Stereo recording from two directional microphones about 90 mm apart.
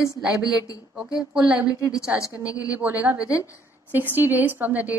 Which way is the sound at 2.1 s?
35° left (ahead or behind).